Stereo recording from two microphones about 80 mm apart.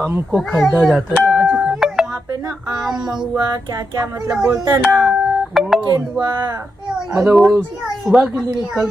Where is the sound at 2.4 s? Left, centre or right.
Right.